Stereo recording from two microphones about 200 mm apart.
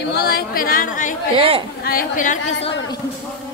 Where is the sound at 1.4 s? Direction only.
30° right (ahead or behind).